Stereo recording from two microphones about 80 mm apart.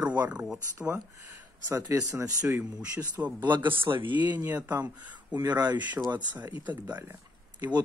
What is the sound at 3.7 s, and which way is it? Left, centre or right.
Speech, right.